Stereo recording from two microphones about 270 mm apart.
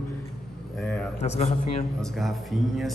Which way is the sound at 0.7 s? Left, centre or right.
Centre.